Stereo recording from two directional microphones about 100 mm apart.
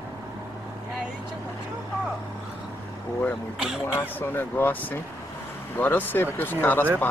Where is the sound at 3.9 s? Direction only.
20° left (ahead or behind).